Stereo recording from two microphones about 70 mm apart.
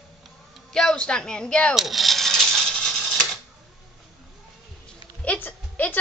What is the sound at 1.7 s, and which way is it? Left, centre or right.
Cash register, centre.